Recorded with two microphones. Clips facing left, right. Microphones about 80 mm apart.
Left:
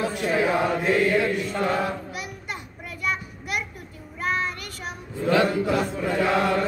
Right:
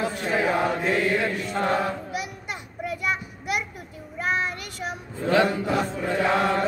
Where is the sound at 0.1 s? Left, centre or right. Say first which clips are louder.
Left 1 dB; right.